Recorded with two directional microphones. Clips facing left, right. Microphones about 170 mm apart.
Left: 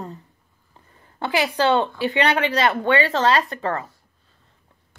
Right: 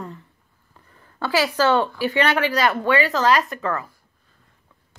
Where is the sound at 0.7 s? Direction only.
20° left (ahead or behind).